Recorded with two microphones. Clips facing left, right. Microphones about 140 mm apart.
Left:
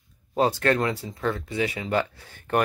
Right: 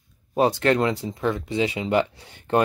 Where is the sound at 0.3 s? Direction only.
20° right (ahead or behind).